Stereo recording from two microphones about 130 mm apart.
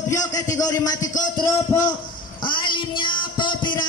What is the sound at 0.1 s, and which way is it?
A man's voice, 25° left (ahead or behind).